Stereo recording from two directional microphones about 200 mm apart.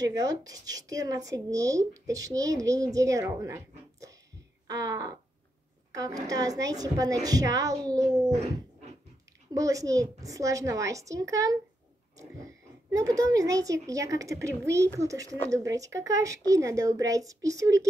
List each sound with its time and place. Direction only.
0.0 s speech: 20° right (ahead or behind)
9.5 s speech: 15° right (ahead or behind)